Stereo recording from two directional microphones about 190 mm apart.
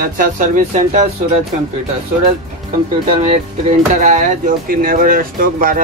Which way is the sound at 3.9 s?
40° right (ahead or behind).